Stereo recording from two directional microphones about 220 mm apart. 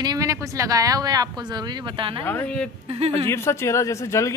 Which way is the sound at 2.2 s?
10° left (ahead or behind).